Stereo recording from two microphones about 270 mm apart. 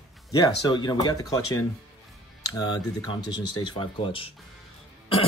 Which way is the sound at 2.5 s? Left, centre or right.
Centre.